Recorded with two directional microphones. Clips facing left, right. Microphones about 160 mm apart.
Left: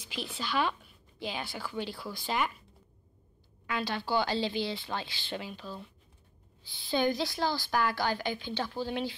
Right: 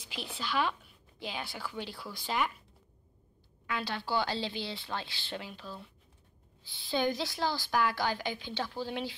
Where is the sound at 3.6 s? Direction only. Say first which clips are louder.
Left 2 dB; 5° left (ahead or behind).